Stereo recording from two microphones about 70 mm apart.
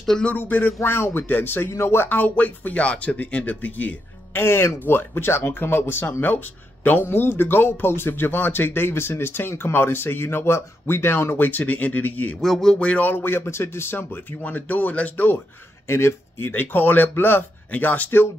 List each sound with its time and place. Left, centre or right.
0.2 s speech: left
12.4 s speech: centre
12.7 s speech: centre
15.9 s speech: left